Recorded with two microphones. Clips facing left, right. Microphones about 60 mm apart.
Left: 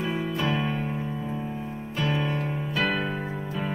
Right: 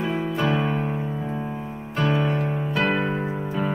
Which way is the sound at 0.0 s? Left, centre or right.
Centre.